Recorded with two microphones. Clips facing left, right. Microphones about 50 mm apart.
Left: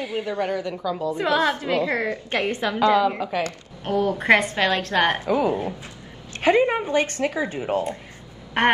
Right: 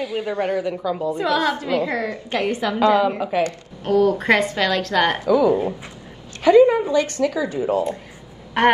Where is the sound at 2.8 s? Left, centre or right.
Centre.